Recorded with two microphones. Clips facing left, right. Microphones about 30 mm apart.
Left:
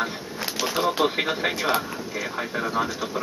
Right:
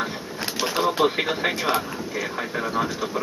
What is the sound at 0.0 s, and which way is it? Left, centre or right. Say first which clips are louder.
Speech: even; centre.